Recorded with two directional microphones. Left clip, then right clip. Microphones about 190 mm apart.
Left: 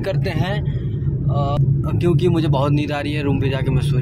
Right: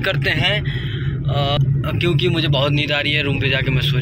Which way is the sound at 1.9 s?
30° left (ahead or behind).